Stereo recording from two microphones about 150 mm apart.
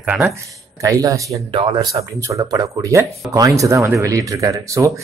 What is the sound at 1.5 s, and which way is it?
Speech, 35° right (ahead or behind).